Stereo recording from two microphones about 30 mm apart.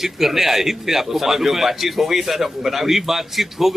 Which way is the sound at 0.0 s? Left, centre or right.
Centre.